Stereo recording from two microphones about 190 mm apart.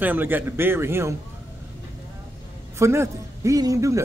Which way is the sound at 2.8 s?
15° right (ahead or behind).